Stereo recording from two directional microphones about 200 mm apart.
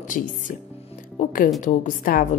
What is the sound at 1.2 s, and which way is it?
A woman's voice, 40° left (ahead or behind).